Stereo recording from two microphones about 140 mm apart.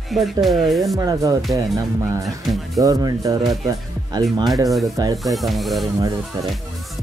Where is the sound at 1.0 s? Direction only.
25° right (ahead or behind).